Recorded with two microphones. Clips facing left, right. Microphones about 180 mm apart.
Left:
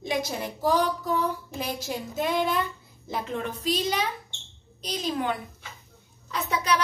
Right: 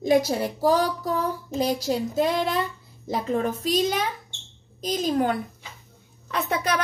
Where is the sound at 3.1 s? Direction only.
40° right (ahead or behind).